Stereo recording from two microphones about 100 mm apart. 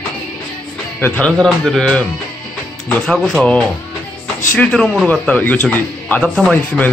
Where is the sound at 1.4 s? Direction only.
5° left (ahead or behind).